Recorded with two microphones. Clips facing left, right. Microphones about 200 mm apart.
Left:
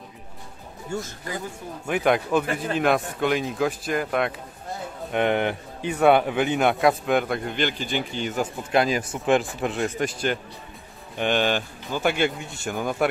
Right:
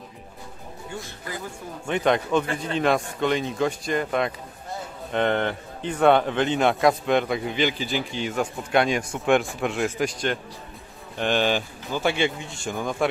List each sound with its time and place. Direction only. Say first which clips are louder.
0.9 s speech: left 6 dB; 45° left (ahead or behind)
1.9 s speech: even; 5° left (ahead or behind)